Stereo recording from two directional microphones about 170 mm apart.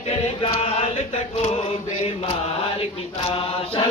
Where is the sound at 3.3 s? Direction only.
35° left (ahead or behind).